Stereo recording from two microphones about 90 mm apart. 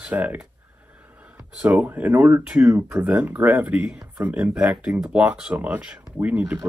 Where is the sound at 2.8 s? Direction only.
25° right (ahead or behind).